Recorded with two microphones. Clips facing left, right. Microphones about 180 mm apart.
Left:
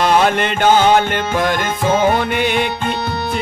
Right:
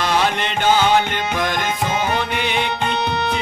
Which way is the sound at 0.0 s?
50° left (ahead or behind).